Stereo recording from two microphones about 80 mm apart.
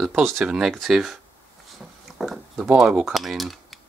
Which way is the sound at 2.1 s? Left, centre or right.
Centre.